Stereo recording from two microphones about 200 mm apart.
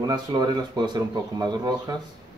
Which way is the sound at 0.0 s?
20° right (ahead or behind).